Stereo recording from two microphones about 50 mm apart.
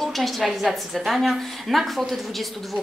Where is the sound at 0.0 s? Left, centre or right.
Centre.